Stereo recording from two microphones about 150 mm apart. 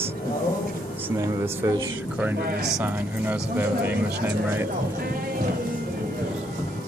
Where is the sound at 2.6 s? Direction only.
5° right (ahead or behind).